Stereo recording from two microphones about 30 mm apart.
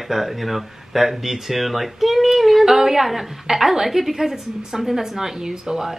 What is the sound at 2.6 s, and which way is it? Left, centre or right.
A woman's voice, centre.